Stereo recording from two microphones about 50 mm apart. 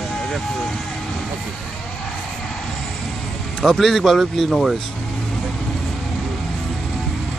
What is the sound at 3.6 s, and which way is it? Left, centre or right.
Speech, centre.